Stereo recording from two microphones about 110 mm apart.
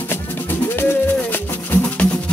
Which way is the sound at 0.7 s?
20° left (ahead or behind).